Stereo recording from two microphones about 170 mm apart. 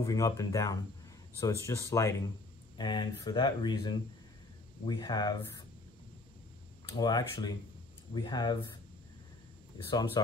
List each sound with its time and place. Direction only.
0.0 s speech: 20° left (ahead or behind)
6.9 s speech: 25° left (ahead or behind)
9.8 s speech: 25° left (ahead or behind)